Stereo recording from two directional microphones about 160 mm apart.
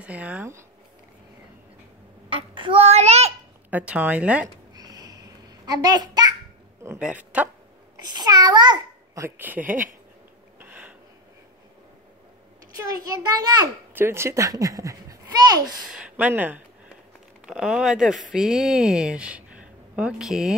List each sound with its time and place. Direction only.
0.0 s speech: 10° right (ahead or behind)
2.2 s a sound: 30° right (ahead or behind)
3.7 s speech: 10° right (ahead or behind)
4.7 s babbling: 25° right (ahead or behind)
7.0 s speech: 10° right (ahead or behind)
8.0 s a child's voice: 25° right (ahead or behind)
10.6 s a sound: 10° right (ahead or behind)
12.9 s a child's voice: 25° right (ahead or behind)
15.8 s speech: 5° right (ahead or behind)